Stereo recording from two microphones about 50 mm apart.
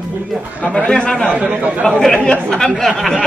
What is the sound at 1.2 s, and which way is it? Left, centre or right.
Speech, right.